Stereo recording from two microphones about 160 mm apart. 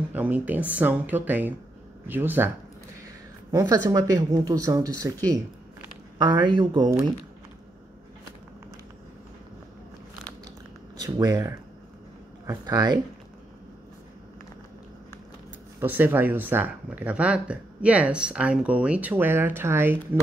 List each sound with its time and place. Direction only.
0.1 s speech: 10° right (ahead or behind)
3.5 s speech: 25° right (ahead or behind)
6.1 s speech: 25° right (ahead or behind)
11.0 s speech: 20° right (ahead or behind)
15.8 s speech: 10° right (ahead or behind)